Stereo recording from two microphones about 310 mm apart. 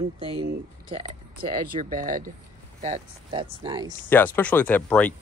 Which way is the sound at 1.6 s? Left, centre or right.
Right.